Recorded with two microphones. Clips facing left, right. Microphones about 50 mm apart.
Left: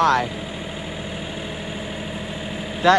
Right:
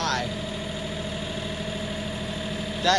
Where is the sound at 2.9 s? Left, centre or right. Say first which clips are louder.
Left 7 dB; centre.